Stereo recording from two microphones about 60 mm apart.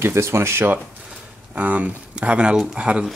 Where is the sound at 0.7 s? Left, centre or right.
Right.